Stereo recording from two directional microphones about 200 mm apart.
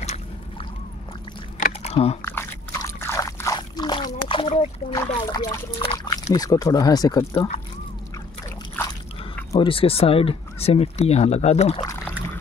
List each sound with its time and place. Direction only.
0.0 s boat: 35° left (ahead or behind)
1.6 s biting: 30° left (ahead or behind)
2.2 s a sound: 15° left (ahead or behind); by 4.6 s 30° left (ahead or behind)
4.9 s speech: 20° left (ahead or behind)
9.5 s speech: 25° left (ahead or behind)